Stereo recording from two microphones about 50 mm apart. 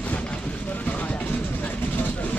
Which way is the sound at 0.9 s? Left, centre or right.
Left.